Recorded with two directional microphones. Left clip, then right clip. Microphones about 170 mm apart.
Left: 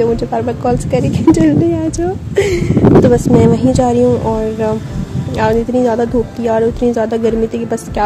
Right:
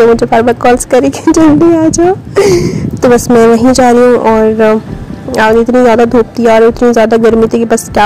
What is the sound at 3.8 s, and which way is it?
A woman's voice, 40° right (ahead or behind).